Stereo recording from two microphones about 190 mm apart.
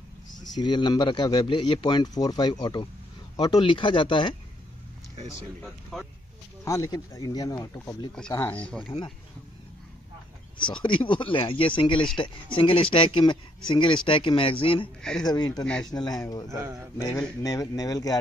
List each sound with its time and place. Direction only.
0.6 s speech: 25° left (ahead or behind)
5.6 s speech: centre (ahead or behind)
6.6 s speech: 15° left (ahead or behind)
8.1 s speech: 5° left (ahead or behind)
10.6 s speech: 25° left (ahead or behind)
15.0 s speech: 5° left (ahead or behind)
15.2 s speech: 20° left (ahead or behind)
15.6 s speech: 5° left (ahead or behind)
15.9 s speech: 20° left (ahead or behind)
16.4 s speech: 15° right (ahead or behind)
17.4 s speech: 20° left (ahead or behind)